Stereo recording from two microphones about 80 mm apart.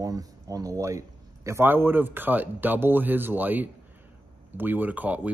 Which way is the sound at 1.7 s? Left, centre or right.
Right.